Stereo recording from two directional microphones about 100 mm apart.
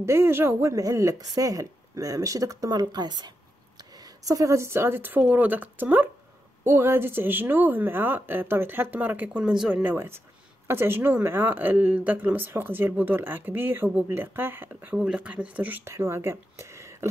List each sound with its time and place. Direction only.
0.0 s speech: 25° right (ahead or behind)
9.4 s speech: 5° right (ahead or behind)
9.9 s speech: 25° right (ahead or behind)